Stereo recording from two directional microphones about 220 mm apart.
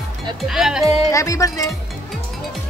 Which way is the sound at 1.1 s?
15° left (ahead or behind).